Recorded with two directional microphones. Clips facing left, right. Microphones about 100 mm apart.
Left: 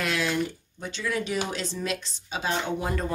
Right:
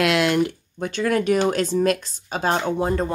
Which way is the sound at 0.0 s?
80° right.